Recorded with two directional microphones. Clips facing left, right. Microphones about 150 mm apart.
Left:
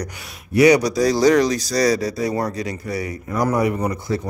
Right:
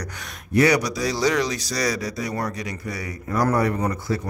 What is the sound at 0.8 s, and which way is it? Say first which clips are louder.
Speech: left 7 dB; 40° left (ahead or behind).